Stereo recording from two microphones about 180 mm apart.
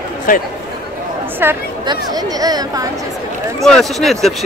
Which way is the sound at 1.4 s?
10° right (ahead or behind).